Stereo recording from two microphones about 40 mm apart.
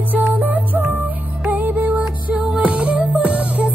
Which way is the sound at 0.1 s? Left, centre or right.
Right.